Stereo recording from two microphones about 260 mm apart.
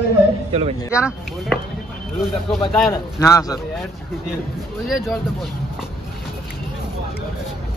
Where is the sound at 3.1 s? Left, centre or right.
Centre.